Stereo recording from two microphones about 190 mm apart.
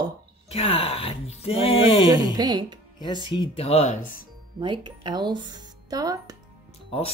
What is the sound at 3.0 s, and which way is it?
Speech, 25° left (ahead or behind).